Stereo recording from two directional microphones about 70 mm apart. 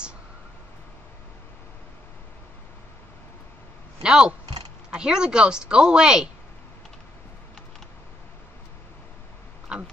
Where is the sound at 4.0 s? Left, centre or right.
Centre.